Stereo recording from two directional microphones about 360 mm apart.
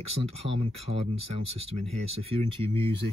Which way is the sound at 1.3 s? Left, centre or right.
Centre.